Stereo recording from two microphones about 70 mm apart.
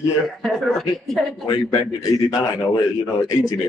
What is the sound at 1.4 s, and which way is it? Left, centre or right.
A man's voice, left.